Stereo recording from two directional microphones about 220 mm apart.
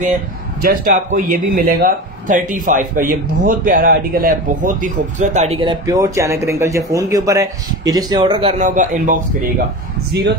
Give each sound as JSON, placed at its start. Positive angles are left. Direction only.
{"t": 0.6, "sound": "a man's voice", "side_deg": -40}